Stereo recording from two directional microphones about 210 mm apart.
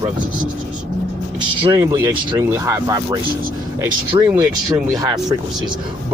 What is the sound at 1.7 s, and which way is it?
Speech, 15° right (ahead or behind).